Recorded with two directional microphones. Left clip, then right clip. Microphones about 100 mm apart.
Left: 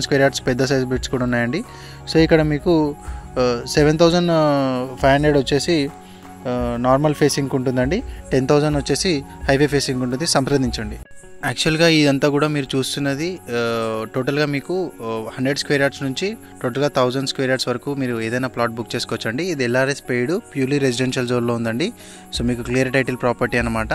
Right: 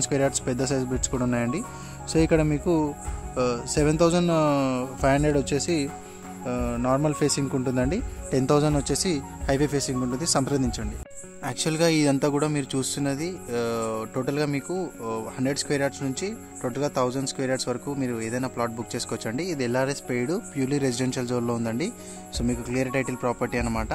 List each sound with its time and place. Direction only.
0.0 s speech: 20° left (ahead or behind); by 23.6 s 40° left (ahead or behind)